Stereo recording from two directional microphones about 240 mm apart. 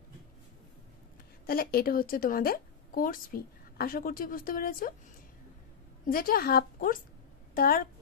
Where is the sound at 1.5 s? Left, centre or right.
Left.